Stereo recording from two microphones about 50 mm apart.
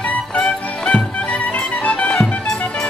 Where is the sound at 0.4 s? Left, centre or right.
Left.